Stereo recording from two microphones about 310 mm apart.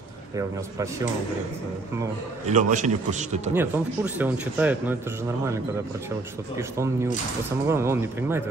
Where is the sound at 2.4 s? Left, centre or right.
Right.